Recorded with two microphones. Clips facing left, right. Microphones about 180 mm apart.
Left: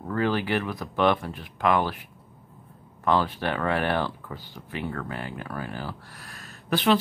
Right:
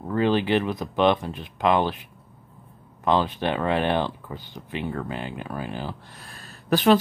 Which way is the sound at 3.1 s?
20° right (ahead or behind).